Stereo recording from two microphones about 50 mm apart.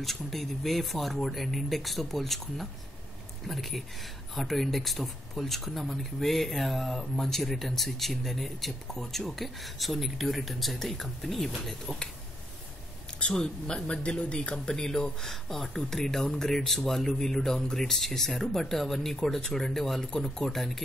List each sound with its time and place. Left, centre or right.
0.0 s speech: centre
13.2 s speech: centre